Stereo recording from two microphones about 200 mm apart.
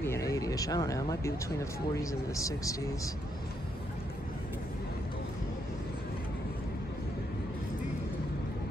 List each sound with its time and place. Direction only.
0.0 s speech: 15° left (ahead or behind)